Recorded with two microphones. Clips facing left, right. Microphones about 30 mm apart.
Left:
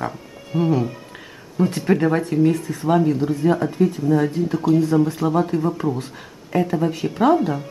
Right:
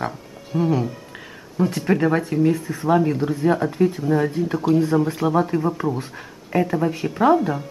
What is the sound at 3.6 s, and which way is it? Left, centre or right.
Speech, centre.